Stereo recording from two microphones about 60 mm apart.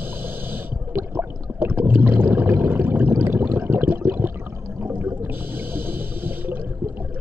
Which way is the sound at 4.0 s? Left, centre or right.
Right.